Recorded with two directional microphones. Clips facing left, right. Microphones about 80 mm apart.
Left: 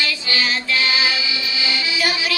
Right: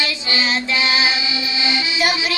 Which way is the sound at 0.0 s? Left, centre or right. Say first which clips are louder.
Right 1 dB; right.